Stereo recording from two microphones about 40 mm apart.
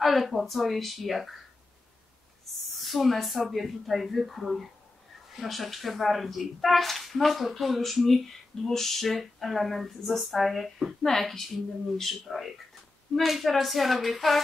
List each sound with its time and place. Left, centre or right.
0.0 s speech: centre
2.7 s speech: centre